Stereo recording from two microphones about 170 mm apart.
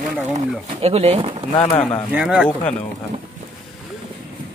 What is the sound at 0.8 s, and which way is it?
Speech, 35° right (ahead or behind).